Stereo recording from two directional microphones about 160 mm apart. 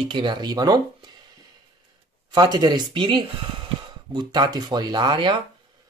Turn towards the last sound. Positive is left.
turn(degrees=-30)  # may be behind; listen again after turning